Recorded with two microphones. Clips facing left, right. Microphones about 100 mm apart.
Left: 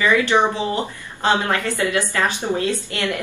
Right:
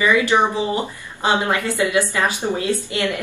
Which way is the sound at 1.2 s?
15° right (ahead or behind).